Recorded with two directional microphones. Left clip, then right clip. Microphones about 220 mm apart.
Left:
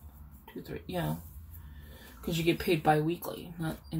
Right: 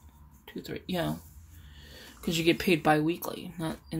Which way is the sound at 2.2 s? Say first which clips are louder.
Right 4 dB; 55° right (ahead or behind).